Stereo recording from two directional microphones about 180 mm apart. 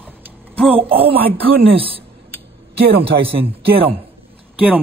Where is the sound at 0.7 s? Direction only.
30° right (ahead or behind).